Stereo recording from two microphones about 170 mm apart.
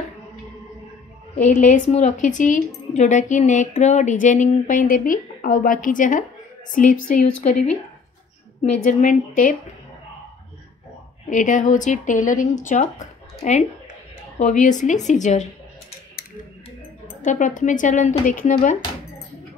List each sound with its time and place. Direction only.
1.5 s speech: 50° left (ahead or behind)
8.8 s speech: 50° left (ahead or behind)
11.2 s speech: 50° left (ahead or behind)
17.2 s speech: 50° left (ahead or behind)